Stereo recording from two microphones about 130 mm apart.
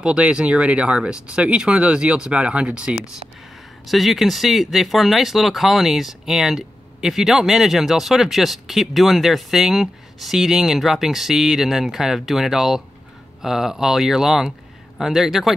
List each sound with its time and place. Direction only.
0.0 s speech: 10° right (ahead or behind)